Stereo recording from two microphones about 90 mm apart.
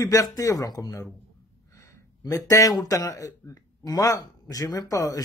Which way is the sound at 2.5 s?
40° left (ahead or behind).